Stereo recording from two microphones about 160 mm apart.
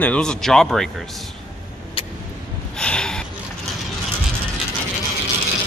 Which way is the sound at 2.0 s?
35° left (ahead or behind).